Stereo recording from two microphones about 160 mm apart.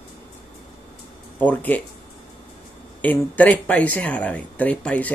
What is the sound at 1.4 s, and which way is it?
Speech, 10° left (ahead or behind).